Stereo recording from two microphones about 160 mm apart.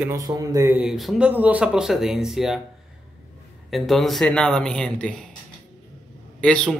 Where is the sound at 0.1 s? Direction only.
20° right (ahead or behind).